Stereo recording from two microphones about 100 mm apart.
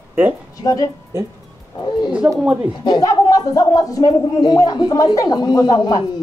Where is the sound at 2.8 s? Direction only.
40° left (ahead or behind).